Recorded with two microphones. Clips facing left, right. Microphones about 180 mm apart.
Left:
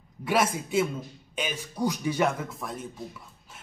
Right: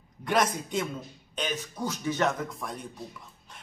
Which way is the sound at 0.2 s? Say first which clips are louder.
Left 1 dB; 5° left (ahead or behind).